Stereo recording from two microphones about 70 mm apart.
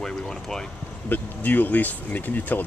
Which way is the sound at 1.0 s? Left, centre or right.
Left.